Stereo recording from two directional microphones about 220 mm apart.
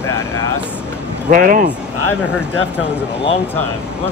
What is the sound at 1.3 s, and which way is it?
Speech, 40° right (ahead or behind).